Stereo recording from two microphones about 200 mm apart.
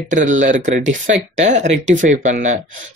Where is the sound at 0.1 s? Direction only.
40° right (ahead or behind).